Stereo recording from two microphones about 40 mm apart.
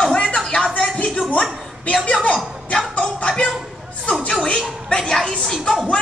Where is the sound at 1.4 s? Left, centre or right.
Left.